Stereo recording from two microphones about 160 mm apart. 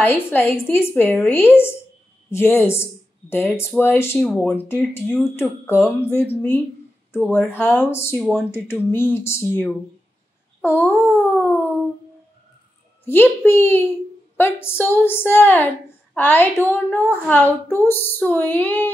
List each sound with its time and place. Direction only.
0.0 s a woman's voice: 15° left (ahead or behind)
7.2 s a woman's voice: 15° left (ahead or behind)
8.2 s speech: centre (ahead or behind)
8.6 s a woman's voice: 15° left (ahead or behind)
13.0 s a woman's voice: 15° left (ahead or behind)